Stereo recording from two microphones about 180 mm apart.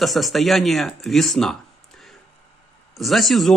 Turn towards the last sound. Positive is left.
turn(degrees=0)  # may be behind; listen again after turning